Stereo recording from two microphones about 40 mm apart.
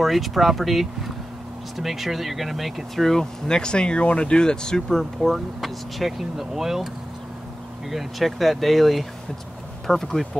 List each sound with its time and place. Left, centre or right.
0.0 s speech: centre
3.1 s speech: centre
5.3 s speech: centre
7.9 s speech: centre